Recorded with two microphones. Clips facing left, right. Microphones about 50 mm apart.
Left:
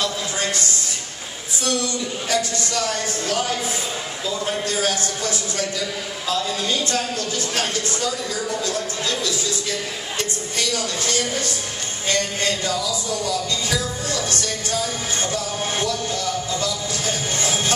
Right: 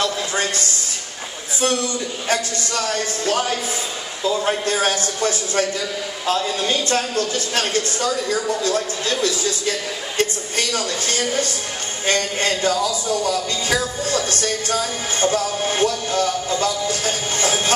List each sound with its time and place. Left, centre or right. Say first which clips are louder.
0.0 s a sound: right 3 dB; right
2.2 s a man's voice: right 1 dB; right
14.4 s music: right 3 dB; right
15.6 s a man's voice: right 4 dB; right